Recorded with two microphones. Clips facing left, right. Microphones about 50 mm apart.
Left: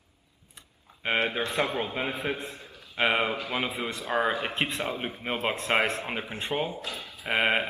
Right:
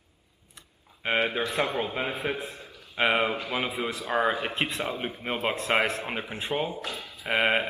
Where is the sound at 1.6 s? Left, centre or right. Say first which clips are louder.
Even; centre.